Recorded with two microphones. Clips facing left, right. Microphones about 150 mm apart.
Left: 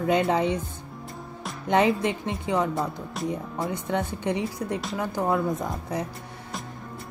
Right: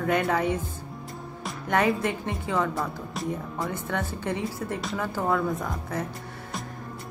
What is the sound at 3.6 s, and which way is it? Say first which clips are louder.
Speech: left 3 dB; 20° left (ahead or behind).